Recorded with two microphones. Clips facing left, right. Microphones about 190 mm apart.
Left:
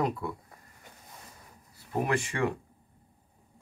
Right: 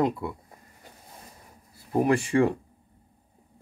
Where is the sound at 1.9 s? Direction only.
30° right (ahead or behind).